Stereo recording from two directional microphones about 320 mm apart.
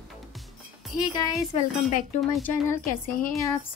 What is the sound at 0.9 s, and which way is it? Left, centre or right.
Speech, centre.